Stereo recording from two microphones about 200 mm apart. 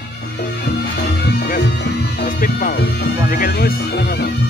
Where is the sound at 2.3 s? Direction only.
45° left (ahead or behind).